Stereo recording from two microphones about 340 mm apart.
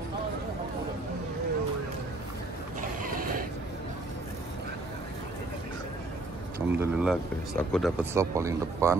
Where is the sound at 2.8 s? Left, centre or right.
Right.